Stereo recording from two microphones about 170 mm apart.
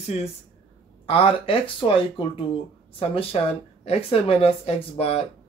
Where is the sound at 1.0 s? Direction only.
30° left (ahead or behind).